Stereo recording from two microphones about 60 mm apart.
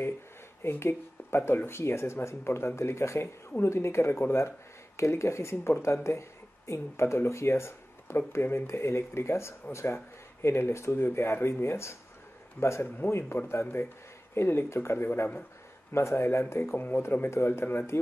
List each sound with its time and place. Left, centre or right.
0.6 s a man's voice: left